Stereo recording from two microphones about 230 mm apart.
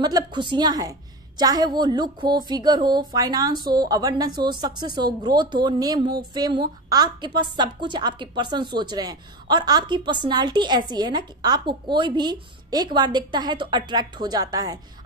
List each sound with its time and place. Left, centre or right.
0.0 s a woman's voice: centre